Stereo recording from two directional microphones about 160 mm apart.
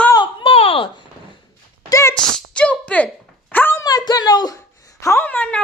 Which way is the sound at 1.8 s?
20° left (ahead or behind).